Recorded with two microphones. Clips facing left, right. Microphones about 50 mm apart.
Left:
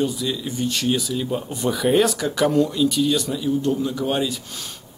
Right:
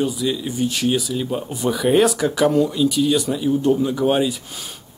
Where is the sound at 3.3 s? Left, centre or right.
Centre.